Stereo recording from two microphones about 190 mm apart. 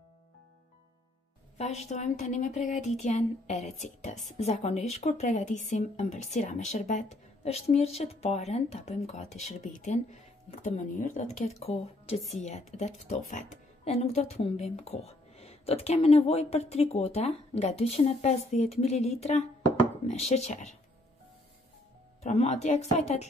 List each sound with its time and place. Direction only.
1.6 s speech: 35° left (ahead or behind)
22.2 s speech: 35° left (ahead or behind)